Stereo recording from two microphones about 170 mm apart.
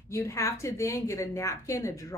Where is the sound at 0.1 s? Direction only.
15° left (ahead or behind).